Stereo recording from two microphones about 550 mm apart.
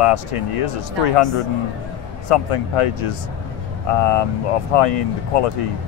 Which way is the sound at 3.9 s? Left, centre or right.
Left.